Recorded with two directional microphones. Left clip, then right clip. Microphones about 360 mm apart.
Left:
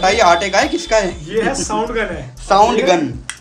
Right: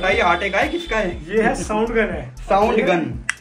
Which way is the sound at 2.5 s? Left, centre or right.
Centre.